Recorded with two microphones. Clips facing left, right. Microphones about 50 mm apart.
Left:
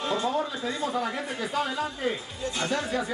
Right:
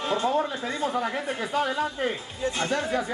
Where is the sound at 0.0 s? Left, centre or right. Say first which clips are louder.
Right 2 dB; right.